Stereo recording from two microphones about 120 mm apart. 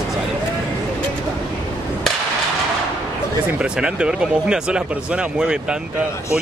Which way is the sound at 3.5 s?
10° right (ahead or behind).